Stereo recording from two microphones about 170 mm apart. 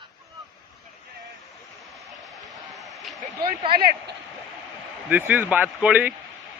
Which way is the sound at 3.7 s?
65° right (ahead or behind).